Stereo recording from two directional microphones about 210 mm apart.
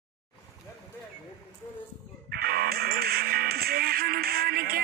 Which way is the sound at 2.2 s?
45° right (ahead or behind).